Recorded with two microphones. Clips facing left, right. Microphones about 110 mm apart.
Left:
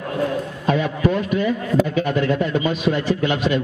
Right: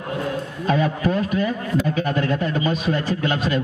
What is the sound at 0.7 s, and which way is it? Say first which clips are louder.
A man's voice: left 1 dB; 40° right (ahead or behind).